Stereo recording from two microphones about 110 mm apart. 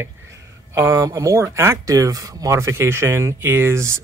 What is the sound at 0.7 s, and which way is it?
Speech, 25° right (ahead or behind).